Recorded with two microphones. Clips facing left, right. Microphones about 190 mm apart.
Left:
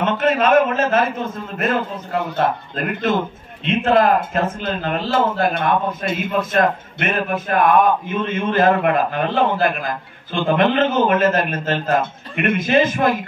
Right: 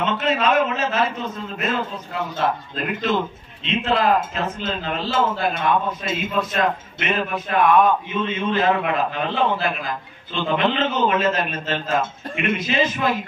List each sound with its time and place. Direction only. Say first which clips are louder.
0.0 s a man's voice: left 4 dB; 50° left (ahead or behind)